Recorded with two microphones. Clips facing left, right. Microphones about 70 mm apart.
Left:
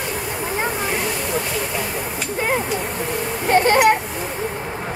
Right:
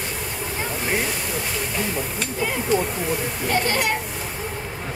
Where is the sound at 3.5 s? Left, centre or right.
Left.